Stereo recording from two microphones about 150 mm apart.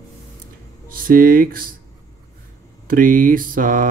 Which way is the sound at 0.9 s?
70° right (ahead or behind).